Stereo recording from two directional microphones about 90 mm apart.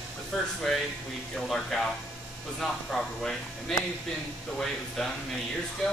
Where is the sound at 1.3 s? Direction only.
5° left (ahead or behind).